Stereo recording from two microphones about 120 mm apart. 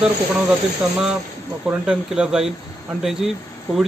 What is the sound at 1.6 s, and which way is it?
Speech, 5° right (ahead or behind).